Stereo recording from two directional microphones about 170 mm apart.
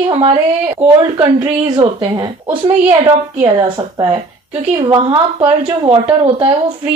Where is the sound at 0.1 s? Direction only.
35° right (ahead or behind).